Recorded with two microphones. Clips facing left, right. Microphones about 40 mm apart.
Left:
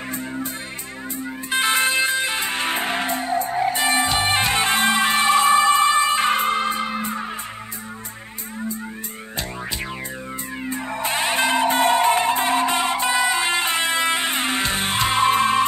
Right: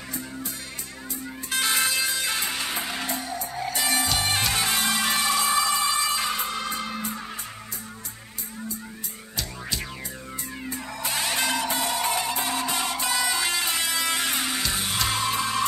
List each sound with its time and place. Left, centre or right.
1.5 s music: left
10.6 s music: left